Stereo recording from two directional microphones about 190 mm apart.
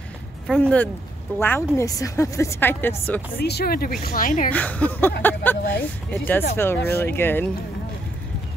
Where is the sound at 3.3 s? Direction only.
55° left (ahead or behind).